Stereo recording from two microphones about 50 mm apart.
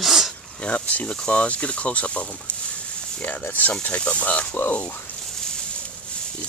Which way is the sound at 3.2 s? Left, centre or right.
Left.